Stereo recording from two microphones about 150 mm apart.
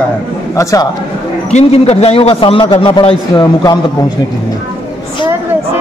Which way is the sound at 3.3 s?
25° left (ahead or behind).